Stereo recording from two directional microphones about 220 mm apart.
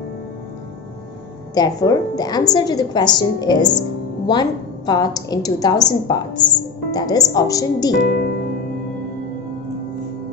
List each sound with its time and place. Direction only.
1.5 s a woman's voice: 15° left (ahead or behind)
8.0 s speech: 45° left (ahead or behind)